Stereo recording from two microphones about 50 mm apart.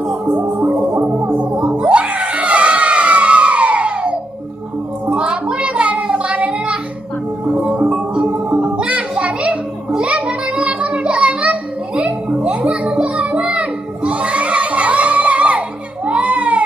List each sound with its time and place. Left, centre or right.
0.3 s music: right
1.8 s a sound: right
5.1 s child singing: centre
7.5 s music: centre
16.1 s baby cry: right